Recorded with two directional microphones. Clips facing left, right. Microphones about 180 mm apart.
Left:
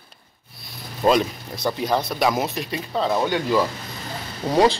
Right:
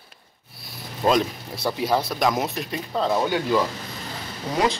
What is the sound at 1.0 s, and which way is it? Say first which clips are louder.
Speech: left 2 dB; centre (ahead or behind).